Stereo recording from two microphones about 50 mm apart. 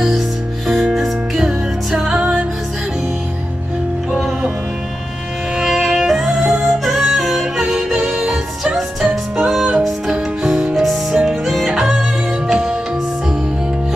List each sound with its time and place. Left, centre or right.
0.9 s music: centre
4.1 s music: centre
5.6 s music: centre